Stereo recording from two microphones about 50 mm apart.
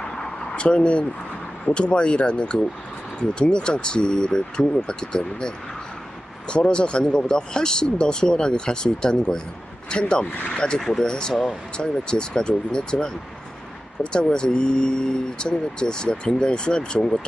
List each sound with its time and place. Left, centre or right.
0.2 s a sound: centre
1.7 s speech: centre
6.5 s speech: centre
14.1 s speech: centre